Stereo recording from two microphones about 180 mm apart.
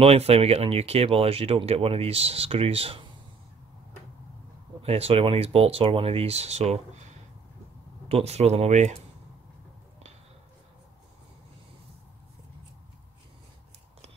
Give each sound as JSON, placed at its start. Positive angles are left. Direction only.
{"t": 0.0, "sound": "speech", "side_deg": -35}
{"t": 4.8, "sound": "speech", "side_deg": -35}